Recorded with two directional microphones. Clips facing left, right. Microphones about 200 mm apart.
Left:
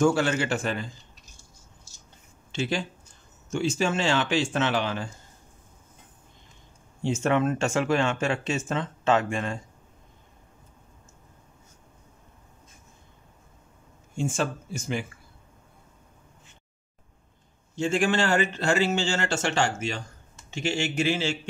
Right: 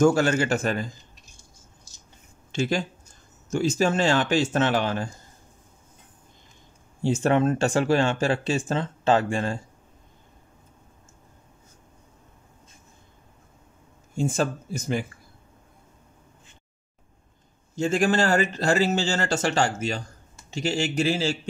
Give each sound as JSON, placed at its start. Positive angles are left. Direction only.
{"t": 0.0, "sound": "speech", "side_deg": -45}
{"t": 2.5, "sound": "speech", "side_deg": -45}
{"t": 7.0, "sound": "speech", "side_deg": -35}
{"t": 14.1, "sound": "speech", "side_deg": -40}
{"t": 17.7, "sound": "speech", "side_deg": -40}